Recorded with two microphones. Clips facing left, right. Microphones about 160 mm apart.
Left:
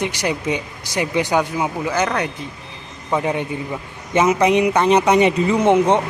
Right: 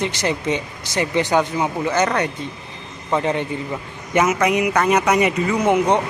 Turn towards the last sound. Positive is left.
turn(degrees=25)  # may be behind; listen again after turning